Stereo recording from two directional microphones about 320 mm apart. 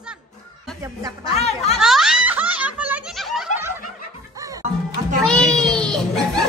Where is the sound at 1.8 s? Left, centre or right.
Centre.